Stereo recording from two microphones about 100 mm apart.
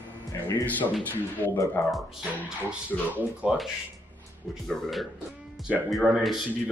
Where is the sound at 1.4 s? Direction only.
30° left (ahead or behind).